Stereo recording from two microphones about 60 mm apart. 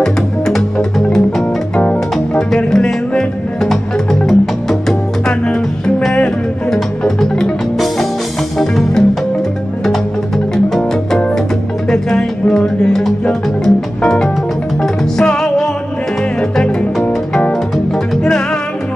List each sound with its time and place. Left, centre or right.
0.0 s music: centre
8.5 s music: centre
10.5 s music: centre